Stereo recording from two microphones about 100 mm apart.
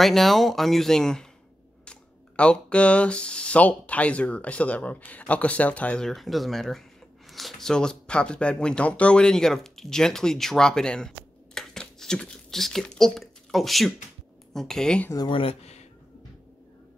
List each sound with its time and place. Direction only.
0.0 s speech: centre (ahead or behind)
15.2 s speech: 65° left (ahead or behind)